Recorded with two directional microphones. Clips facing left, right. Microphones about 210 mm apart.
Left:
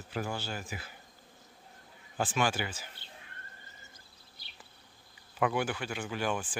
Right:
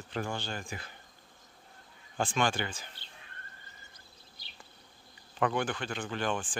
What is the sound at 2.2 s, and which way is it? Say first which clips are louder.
Speech: even; 5° left (ahead or behind).